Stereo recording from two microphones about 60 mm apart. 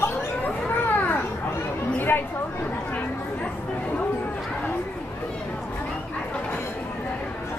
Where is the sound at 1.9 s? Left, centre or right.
Left.